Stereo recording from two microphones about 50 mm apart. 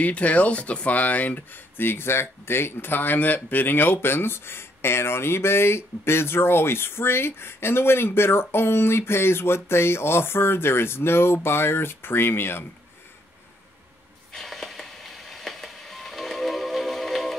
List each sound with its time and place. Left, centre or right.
0.0 s speech: left
1.8 s speech: left
14.3 s a sound: centre